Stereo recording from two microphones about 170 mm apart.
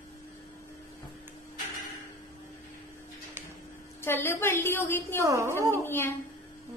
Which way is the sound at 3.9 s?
15° left (ahead or behind).